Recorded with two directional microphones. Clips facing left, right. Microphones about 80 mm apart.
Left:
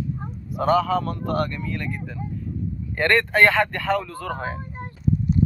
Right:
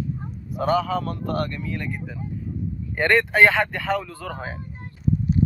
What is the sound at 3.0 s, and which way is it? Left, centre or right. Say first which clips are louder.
Speech: right 1 dB; centre.